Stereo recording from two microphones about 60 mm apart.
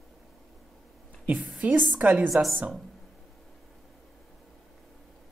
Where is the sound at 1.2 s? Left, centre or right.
Right.